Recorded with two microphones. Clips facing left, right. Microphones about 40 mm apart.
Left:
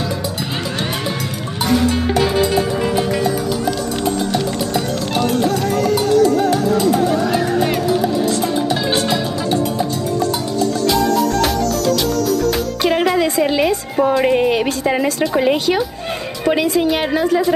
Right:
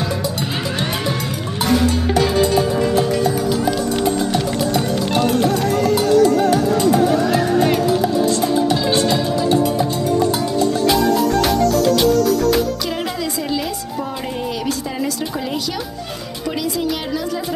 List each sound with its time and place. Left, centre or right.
12.8 s a woman's voice: left